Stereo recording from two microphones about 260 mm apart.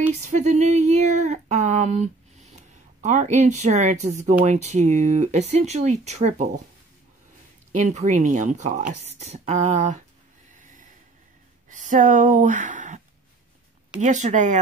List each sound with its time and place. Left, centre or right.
0.2 s speech: right
7.7 s speech: right
11.7 s speech: right
14.0 s speech: right